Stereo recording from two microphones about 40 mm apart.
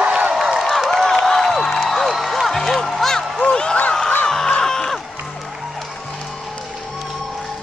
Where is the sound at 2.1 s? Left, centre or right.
Centre.